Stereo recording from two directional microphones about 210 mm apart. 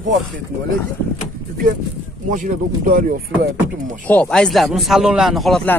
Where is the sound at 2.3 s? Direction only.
40° right (ahead or behind).